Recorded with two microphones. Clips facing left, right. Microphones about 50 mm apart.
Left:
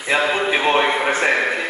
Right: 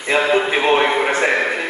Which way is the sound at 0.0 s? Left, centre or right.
Centre.